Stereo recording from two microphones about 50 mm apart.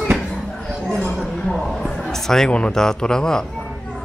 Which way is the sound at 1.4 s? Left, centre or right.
Centre.